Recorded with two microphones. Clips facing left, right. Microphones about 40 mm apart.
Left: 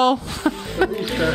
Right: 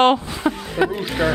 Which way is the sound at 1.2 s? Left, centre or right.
Right.